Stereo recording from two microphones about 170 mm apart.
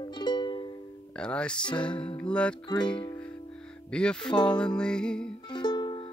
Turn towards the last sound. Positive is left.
turn(degrees=30)  # may be behind; listen again after turning